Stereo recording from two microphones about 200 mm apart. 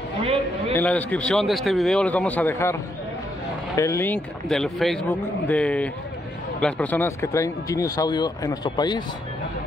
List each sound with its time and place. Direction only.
0.2 s a man's voice: 30° right (ahead or behind)
0.7 s a man's voice: 5° left (ahead or behind)